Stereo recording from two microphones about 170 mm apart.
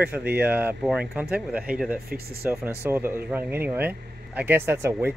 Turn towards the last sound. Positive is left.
turn(degrees=-15)  # may be behind; listen again after turning